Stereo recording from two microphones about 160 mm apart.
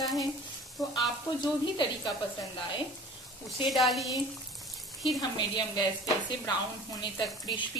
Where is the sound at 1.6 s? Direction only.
30° left (ahead or behind).